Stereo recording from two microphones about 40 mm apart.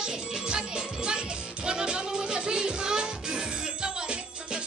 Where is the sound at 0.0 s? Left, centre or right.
Right.